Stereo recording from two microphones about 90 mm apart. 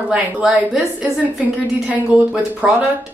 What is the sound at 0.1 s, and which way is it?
Speech, 10° right (ahead or behind).